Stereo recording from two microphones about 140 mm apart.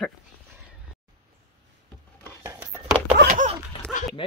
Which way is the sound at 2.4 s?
20° right (ahead or behind).